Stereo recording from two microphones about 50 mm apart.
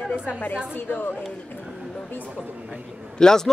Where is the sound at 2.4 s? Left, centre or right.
Right.